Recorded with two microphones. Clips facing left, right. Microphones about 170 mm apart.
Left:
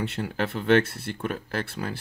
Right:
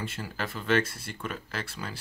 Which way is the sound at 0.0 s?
60° left (ahead or behind).